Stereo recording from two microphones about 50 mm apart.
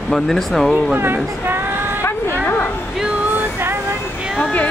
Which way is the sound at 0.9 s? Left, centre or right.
Right.